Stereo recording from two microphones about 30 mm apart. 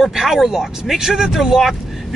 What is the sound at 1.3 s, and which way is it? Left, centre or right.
Speech, centre.